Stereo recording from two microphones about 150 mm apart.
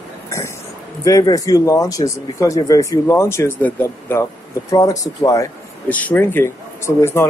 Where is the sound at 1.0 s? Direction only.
25° left (ahead or behind).